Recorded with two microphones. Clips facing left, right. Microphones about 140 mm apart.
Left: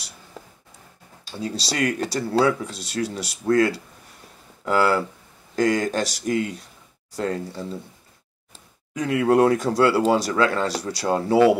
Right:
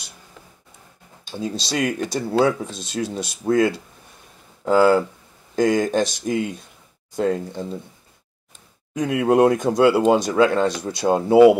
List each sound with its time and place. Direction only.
0.4 s a sound: 35° left (ahead or behind)
1.3 s speech: 20° right (ahead or behind)
8.9 s speech: 20° right (ahead or behind)